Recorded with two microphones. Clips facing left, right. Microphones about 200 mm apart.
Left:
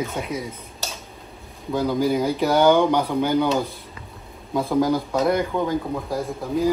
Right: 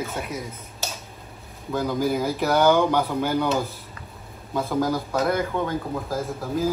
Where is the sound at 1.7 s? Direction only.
Centre (ahead or behind).